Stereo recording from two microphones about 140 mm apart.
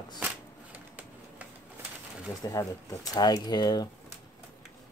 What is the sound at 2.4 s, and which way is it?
Speech, 25° left (ahead or behind).